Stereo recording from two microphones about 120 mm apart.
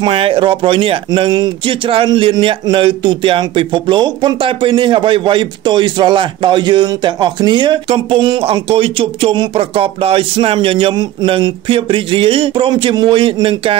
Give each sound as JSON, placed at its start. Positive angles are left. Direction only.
{"t": 0.0, "sound": "speech", "side_deg": -50}